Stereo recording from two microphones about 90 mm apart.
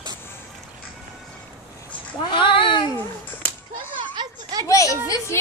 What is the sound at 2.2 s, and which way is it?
Speech, 65° left (ahead or behind).